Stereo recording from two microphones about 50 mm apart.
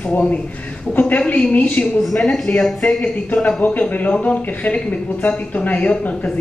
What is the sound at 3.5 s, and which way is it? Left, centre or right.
Speech, left.